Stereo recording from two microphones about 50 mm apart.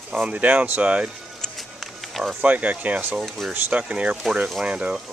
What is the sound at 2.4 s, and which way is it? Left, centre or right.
Speech, right.